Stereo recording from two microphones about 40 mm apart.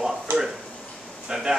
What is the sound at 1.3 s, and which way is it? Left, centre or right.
Speech, centre.